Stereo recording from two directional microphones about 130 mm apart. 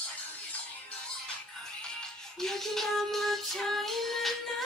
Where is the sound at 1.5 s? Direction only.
5° left (ahead or behind).